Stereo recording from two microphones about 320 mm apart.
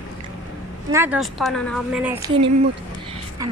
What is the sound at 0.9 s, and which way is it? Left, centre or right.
A woman's voice, centre.